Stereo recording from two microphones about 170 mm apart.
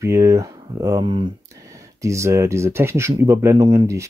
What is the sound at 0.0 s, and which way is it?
Speech, 15° right (ahead or behind).